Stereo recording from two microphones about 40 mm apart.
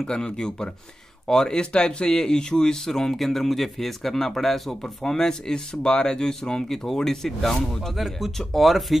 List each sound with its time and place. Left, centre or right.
0.0 s speech: centre
1.6 s speech: left; by 8.9 s centre